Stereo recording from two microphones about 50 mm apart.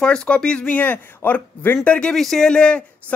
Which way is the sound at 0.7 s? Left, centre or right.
Left.